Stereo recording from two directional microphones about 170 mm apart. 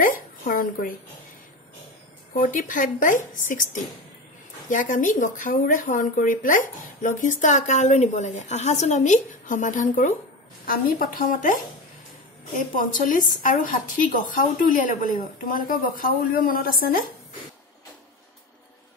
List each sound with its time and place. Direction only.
0.0 s a sound: 55° left (ahead or behind)
2.3 s speech: 50° left (ahead or behind)
4.6 s a woman's voice: 50° left (ahead or behind)
12.5 s a woman's voice: 50° left (ahead or behind)